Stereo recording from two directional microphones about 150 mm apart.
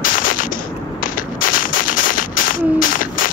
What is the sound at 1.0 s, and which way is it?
Gunshot, 65° left (ahead or behind).